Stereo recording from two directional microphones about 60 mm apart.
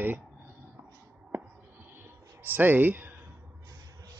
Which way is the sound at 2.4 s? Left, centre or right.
Right.